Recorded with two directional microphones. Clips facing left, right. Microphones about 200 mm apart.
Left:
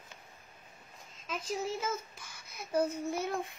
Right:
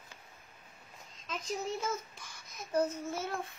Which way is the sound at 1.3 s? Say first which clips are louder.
Left 1 dB; 5° left (ahead or behind).